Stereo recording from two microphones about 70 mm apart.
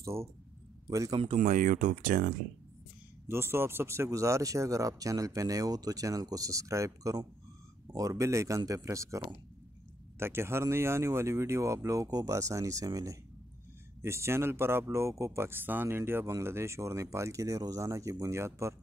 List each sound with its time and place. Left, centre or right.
0.0 s speech: right
0.8 s speech: right
3.3 s speech: right
10.1 s speech: right
14.0 s speech: right